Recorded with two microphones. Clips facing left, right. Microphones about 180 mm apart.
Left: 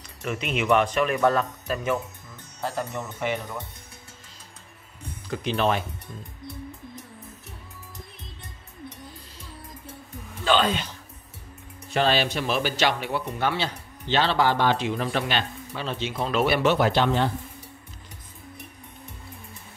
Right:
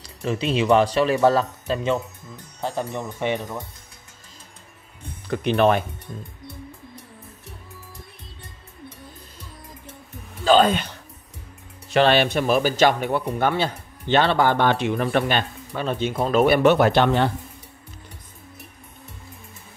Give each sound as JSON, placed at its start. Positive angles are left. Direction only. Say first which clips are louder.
{"t": 0.0, "sound": "speech", "louder": "right 6 dB", "side_deg": -35}
{"t": 5.3, "sound": "speech", "louder": "right 6 dB", "side_deg": -60}
{"t": 10.4, "sound": "speech", "louder": "right 6 dB", "side_deg": -45}
{"t": 11.9, "sound": "speech", "louder": "right 5 dB", "side_deg": -70}